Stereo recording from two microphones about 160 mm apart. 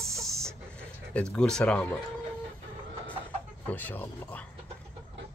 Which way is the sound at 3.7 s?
10° left (ahead or behind).